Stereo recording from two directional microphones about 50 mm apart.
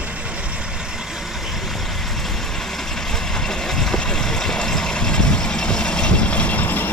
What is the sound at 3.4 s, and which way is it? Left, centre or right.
Vehicle, centre.